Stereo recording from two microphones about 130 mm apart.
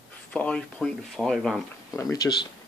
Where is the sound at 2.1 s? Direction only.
30° left (ahead or behind).